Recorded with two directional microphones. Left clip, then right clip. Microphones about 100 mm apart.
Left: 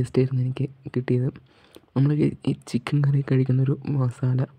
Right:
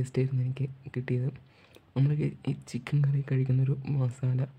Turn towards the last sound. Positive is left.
turn(degrees=50)  # may be behind; listen again after turning